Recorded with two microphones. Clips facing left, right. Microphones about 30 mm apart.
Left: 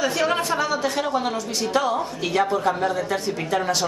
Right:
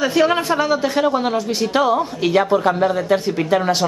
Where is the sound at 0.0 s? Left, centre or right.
Centre.